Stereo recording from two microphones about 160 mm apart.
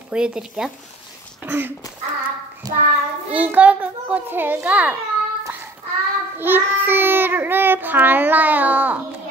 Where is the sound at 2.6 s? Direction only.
25° right (ahead or behind).